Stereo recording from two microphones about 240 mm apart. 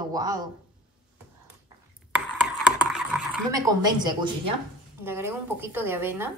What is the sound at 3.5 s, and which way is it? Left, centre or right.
Speech, centre.